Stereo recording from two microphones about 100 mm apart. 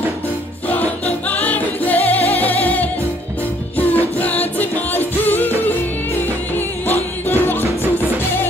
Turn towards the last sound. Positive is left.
turn(degrees=20)  # may be behind; listen again after turning